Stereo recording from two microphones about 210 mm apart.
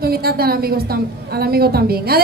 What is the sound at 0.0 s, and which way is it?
A man's voice, 45° right (ahead or behind).